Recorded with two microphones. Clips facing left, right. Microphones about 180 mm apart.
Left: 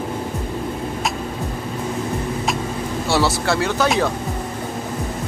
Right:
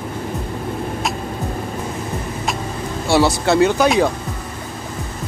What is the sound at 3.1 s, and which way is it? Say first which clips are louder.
Speech: right 5 dB; 20° right (ahead or behind).